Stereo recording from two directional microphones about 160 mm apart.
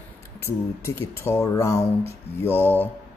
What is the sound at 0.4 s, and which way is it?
Speech, 15° left (ahead or behind).